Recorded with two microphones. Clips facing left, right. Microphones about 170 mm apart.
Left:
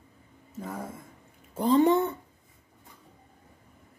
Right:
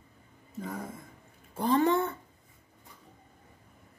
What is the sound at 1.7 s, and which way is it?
Speech, 15° left (ahead or behind).